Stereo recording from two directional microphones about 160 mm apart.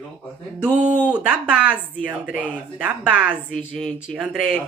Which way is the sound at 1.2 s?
5° right (ahead or behind).